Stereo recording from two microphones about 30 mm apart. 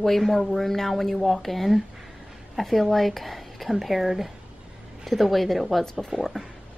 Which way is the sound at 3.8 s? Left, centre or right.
Centre.